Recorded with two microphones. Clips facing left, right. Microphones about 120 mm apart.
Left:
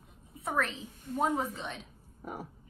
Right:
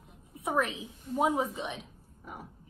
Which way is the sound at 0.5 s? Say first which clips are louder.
Right 3 dB; 15° right (ahead or behind).